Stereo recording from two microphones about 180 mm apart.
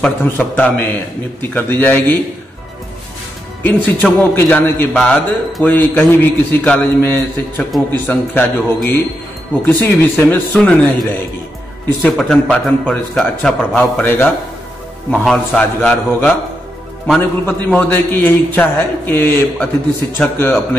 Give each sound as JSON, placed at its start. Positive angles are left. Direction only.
{"t": 0.0, "sound": "a man's voice", "side_deg": 10}
{"t": 3.6, "sound": "a man's voice", "side_deg": 10}
{"t": 10.1, "sound": "a man's voice", "side_deg": 5}